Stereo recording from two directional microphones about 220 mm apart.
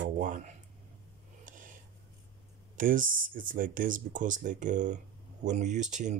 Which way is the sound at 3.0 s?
60° right (ahead or behind).